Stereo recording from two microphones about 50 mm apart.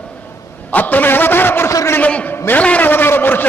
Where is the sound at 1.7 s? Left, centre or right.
Left.